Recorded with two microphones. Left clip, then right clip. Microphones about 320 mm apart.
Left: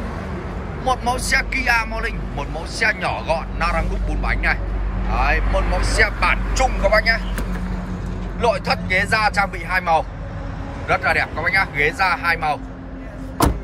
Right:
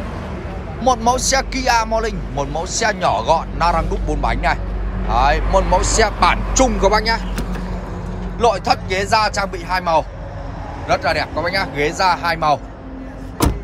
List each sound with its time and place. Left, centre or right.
1.0 s speech: centre
5.5 s speech: right
5.9 s speech: centre
8.4 s speech: centre